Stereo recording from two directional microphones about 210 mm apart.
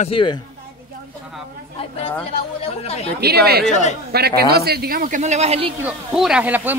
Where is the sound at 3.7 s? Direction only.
35° left (ahead or behind).